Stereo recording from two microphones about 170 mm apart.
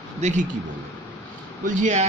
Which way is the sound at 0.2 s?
45° right (ahead or behind).